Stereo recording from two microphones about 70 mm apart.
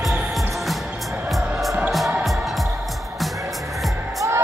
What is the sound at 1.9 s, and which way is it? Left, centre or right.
Music, centre.